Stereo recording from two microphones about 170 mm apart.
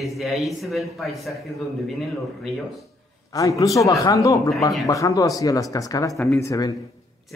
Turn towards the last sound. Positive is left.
turn(degrees=20)  # may be behind; listen again after turning